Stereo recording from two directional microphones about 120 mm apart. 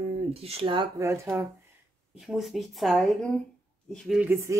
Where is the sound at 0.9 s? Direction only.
25° right (ahead or behind).